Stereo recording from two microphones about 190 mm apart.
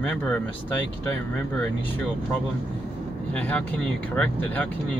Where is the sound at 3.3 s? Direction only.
10° left (ahead or behind).